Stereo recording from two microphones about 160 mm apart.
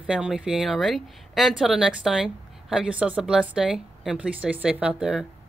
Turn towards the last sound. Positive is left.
turn(degrees=-5)  # may be behind; listen again after turning